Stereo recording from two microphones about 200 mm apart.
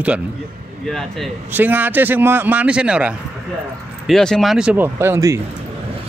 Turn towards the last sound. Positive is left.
turn(degrees=-15)  # may be behind; listen again after turning